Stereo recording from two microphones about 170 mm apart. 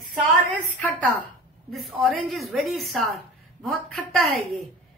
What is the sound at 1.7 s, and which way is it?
A woman's voice, centre (ahead or behind).